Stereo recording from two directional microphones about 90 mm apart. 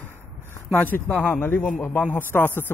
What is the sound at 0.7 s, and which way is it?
Speech, 20° left (ahead or behind).